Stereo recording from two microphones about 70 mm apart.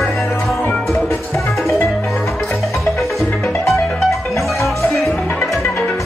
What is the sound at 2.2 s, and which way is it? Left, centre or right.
Music, left.